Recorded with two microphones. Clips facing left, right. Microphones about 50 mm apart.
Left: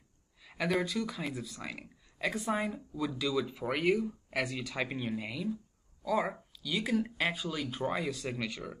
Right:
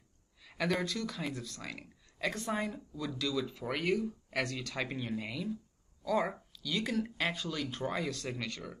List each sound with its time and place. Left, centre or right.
0.4 s speech: centre